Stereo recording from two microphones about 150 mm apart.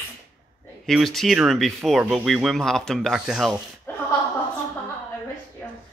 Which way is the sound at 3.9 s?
15° left (ahead or behind).